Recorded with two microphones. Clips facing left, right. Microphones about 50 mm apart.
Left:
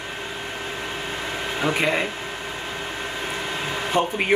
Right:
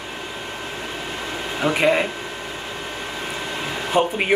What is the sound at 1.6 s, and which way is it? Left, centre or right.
Speech, centre.